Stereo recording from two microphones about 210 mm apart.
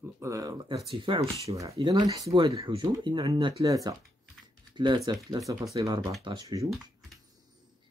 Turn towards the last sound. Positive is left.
turn(degrees=-15)  # may be behind; listen again after turning